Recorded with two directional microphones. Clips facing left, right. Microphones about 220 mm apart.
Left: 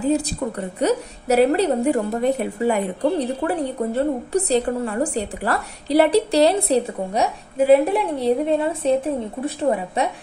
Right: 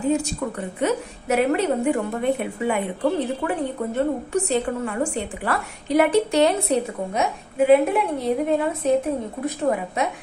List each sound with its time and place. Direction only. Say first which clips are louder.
0.0 s a woman's voice: left 2 dB; 35° left (ahead or behind)